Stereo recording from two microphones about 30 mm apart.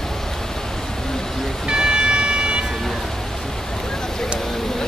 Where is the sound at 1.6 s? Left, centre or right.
Right.